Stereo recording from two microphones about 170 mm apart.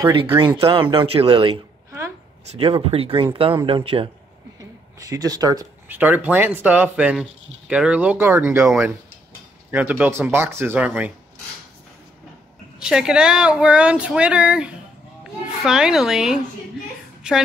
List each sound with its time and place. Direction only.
0.0 s speech: 25° right (ahead or behind)
1.9 s a sound: 15° right (ahead or behind)
2.4 s speech: 35° right (ahead or behind)
4.9 s speech: 20° right (ahead or behind)
5.9 s speech: 10° right (ahead or behind)
12.7 s speech: 5° right (ahead or behind)